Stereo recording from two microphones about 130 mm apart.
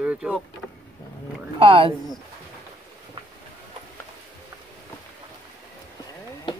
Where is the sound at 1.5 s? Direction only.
45° right (ahead or behind).